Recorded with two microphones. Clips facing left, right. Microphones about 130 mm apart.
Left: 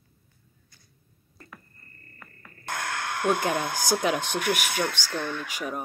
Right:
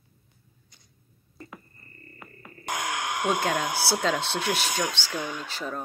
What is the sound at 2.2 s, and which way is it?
Music, 15° right (ahead or behind).